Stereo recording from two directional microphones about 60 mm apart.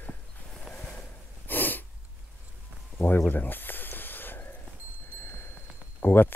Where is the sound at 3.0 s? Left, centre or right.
Left.